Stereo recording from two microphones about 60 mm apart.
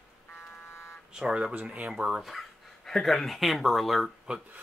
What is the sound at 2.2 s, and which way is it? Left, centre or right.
Speech, centre.